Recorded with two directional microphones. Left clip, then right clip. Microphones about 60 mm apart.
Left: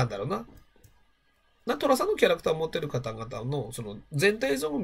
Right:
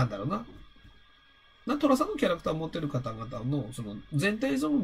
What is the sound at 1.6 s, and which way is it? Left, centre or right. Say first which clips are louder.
Speech: left 2 dB; left.